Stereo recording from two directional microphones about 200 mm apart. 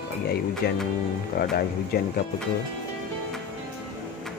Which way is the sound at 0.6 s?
50° left (ahead or behind).